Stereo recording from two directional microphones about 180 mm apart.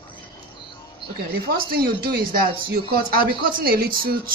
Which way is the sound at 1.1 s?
55° right (ahead or behind).